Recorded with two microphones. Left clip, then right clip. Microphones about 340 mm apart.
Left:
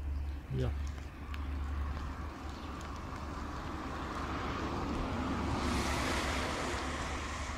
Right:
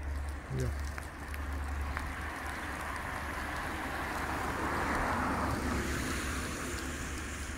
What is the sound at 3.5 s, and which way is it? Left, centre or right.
Vehicle, right.